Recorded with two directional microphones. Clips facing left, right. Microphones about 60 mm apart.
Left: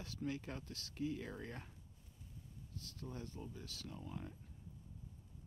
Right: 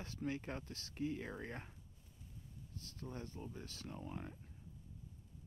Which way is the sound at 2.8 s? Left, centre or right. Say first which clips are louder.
Right 1 dB; right.